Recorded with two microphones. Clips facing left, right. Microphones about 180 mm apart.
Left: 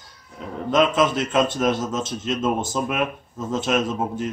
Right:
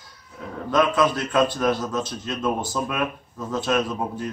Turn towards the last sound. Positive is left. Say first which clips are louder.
# left 2 dB
turn(degrees=20)  # may be behind; listen again after turning